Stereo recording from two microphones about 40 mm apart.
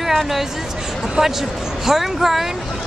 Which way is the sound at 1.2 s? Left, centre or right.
Centre.